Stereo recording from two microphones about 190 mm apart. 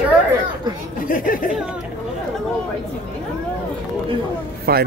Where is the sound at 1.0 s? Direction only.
45° left (ahead or behind).